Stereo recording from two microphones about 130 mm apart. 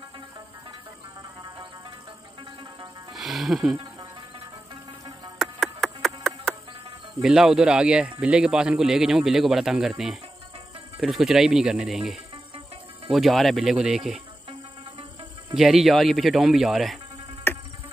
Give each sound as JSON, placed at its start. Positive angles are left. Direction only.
{"t": 3.2, "sound": "music", "side_deg": 0}
{"t": 5.4, "sound": "a sound", "side_deg": 0}
{"t": 7.2, "sound": "a man's voice", "side_deg": -5}
{"t": 15.5, "sound": "a man's voice", "side_deg": 0}
{"t": 17.5, "sound": "insect", "side_deg": 15}